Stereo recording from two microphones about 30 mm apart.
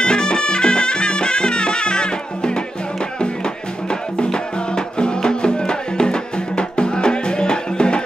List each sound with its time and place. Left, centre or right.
0.0 s music: left
4.2 s music: left